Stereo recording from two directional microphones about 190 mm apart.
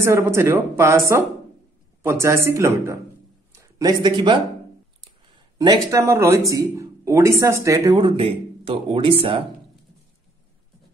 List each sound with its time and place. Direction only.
0.0 s speech: 15° right (ahead or behind)
5.6 s speech: 20° right (ahead or behind)